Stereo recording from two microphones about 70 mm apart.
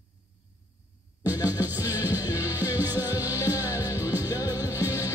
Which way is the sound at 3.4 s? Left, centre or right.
Left.